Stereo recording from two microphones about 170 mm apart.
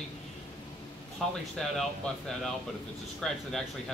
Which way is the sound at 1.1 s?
Centre (ahead or behind).